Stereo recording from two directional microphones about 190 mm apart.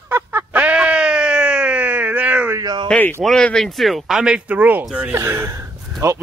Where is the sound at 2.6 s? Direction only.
20° right (ahead or behind).